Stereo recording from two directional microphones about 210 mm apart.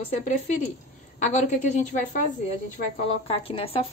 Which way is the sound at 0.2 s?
35° left (ahead or behind).